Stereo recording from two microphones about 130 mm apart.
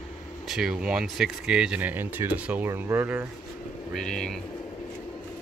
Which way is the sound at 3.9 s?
5° left (ahead or behind).